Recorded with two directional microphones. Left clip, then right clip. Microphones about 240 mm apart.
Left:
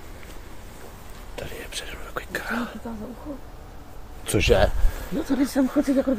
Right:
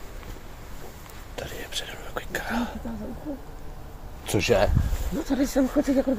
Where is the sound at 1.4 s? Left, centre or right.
Centre.